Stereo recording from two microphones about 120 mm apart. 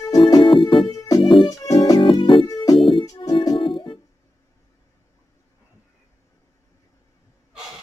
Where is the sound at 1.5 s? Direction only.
30° left (ahead or behind).